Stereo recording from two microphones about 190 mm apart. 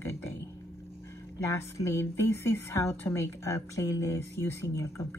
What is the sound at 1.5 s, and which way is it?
Speech, 15° left (ahead or behind).